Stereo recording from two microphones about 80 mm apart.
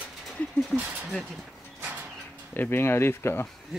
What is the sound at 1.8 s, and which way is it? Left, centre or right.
Bird, centre.